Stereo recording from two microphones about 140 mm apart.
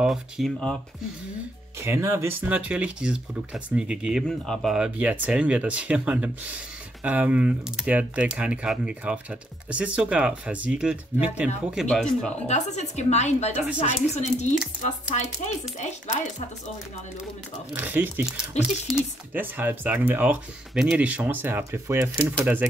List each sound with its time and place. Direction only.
0.0 s speech: centre (ahead or behind)
1.8 s speech: 20° right (ahead or behind)
4.3 s speech: 5° left (ahead or behind)
11.9 s speech: 5° left (ahead or behind)
12.4 s a woman's voice: 55° left (ahead or behind)
17.7 s speech: 15° right (ahead or behind)